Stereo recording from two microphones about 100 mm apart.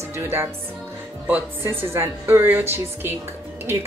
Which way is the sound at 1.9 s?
25° right (ahead or behind).